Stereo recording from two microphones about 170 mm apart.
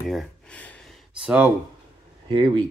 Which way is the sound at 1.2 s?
10° right (ahead or behind).